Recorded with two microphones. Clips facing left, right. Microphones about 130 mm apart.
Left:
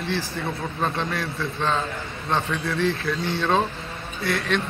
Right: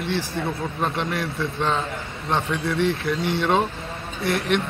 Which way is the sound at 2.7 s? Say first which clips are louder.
Right 1 dB; 25° right (ahead or behind).